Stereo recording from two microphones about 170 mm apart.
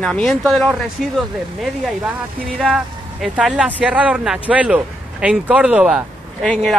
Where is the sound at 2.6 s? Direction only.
5° right (ahead or behind).